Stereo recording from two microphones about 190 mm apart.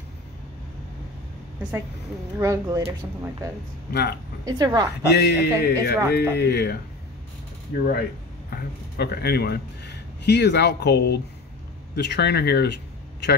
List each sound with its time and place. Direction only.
2.3 s speech: 15° right (ahead or behind)
3.9 s a man's voice: 60° left (ahead or behind)
4.5 s a woman's voice: 20° right (ahead or behind)
5.1 s a man's voice: 60° left (ahead or behind)